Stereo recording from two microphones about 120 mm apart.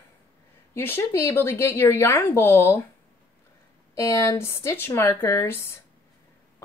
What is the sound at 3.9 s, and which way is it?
A woman's voice, 25° left (ahead or behind).